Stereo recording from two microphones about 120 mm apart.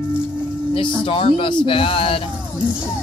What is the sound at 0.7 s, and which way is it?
Speech, 45° left (ahead or behind).